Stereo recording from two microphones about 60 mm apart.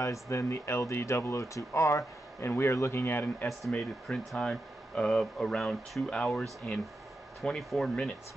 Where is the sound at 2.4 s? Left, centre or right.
Left.